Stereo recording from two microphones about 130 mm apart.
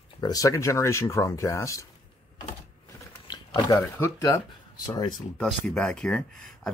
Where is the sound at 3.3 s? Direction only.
30° left (ahead or behind).